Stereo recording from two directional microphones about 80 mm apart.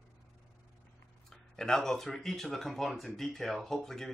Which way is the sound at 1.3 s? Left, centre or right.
Centre.